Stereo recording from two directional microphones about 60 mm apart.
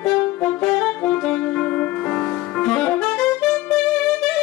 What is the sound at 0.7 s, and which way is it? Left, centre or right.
Saxophone, centre.